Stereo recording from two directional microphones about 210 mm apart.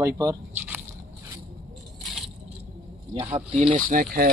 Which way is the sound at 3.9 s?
40° right (ahead or behind).